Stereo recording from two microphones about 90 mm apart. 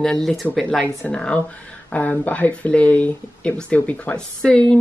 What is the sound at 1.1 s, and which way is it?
Speech, 10° left (ahead or behind).